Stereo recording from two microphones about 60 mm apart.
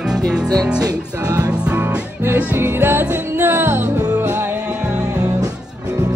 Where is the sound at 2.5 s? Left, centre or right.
Right.